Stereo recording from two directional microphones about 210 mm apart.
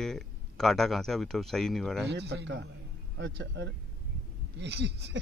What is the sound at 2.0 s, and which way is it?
Speech, 55° right (ahead or behind).